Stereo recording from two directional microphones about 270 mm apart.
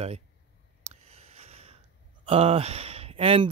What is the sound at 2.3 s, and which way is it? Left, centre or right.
Speech, right.